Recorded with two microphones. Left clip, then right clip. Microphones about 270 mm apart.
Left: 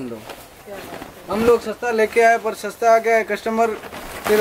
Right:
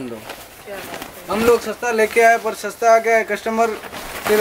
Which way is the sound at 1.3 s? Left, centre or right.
Centre.